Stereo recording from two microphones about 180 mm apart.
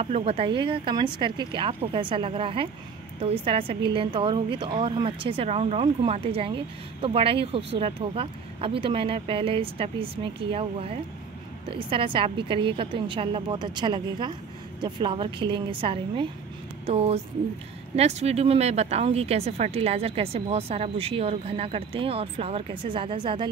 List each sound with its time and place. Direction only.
0.0 s a woman's voice: 35° right (ahead or behind)